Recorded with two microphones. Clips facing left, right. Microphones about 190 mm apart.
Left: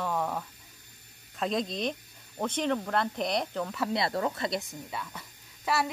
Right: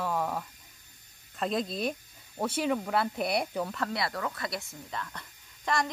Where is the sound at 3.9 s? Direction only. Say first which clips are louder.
Left 4 dB; 25° left (ahead or behind).